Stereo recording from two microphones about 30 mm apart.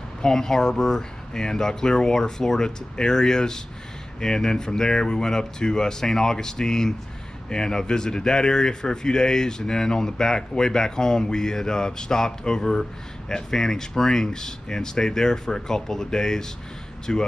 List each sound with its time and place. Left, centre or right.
0.2 s speech: centre